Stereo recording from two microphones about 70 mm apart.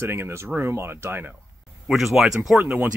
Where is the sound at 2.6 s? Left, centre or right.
Right.